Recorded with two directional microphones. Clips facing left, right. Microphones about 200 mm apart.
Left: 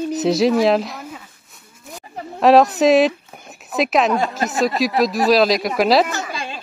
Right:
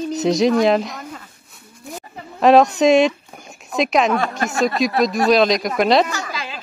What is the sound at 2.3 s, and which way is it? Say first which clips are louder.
Speech: even; centre (ahead or behind).